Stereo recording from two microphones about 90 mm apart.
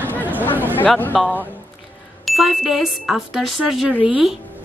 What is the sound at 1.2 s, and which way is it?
Speech, centre (ahead or behind).